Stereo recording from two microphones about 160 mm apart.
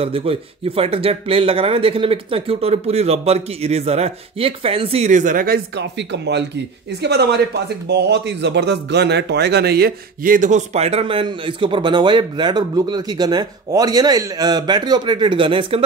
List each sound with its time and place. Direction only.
0.0 s speech: 35° right (ahead or behind)